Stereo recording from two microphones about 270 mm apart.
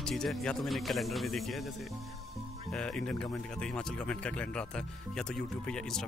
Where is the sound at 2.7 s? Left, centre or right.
Centre.